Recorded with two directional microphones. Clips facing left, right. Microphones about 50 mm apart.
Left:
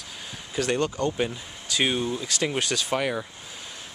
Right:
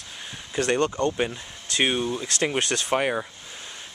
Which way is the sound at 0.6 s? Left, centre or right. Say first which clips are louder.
Right 2 dB; right.